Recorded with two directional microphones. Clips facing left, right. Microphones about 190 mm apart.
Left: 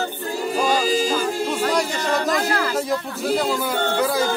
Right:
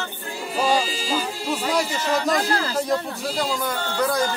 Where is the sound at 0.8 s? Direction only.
45° left (ahead or behind).